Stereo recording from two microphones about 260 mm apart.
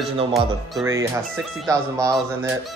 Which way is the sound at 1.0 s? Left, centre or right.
Centre.